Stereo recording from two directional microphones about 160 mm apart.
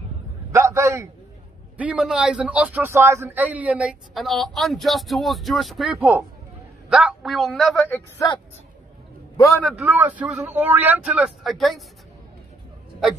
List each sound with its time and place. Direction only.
0.5 s a sound: 15° right (ahead or behind)
1.8 s speech: 5° right (ahead or behind)
9.6 s speech: 5° right (ahead or behind)